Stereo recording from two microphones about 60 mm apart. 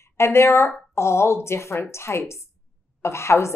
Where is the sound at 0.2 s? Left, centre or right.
Left.